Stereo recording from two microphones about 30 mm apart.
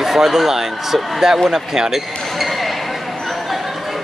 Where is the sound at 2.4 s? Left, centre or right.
Centre.